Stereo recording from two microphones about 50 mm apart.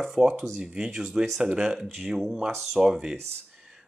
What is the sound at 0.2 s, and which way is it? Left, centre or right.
Speech, right.